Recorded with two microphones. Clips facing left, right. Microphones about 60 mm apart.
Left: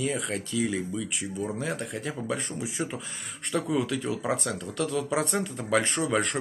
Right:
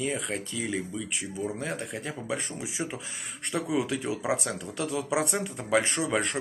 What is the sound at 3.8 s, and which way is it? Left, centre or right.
Speech, right.